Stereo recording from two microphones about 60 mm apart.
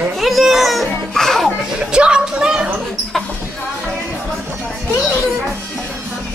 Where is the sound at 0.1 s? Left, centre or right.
Centre.